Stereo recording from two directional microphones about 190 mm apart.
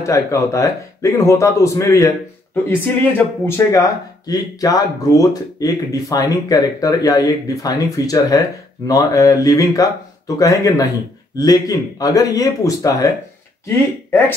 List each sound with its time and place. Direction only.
0.0 s a man's voice: 15° left (ahead or behind)